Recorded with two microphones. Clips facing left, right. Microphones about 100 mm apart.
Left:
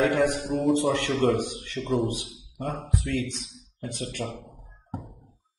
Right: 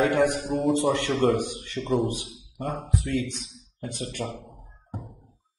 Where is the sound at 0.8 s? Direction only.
30° right (ahead or behind).